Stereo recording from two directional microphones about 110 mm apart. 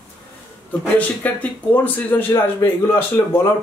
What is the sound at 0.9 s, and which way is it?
A man's voice, 15° left (ahead or behind).